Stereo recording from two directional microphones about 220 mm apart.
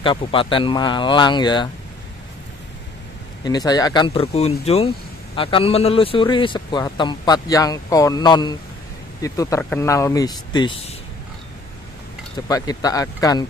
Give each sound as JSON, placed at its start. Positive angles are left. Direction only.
{"t": 0.0, "sound": "speech", "side_deg": 25}
{"t": 3.4, "sound": "speech", "side_deg": 15}
{"t": 12.4, "sound": "speech", "side_deg": 15}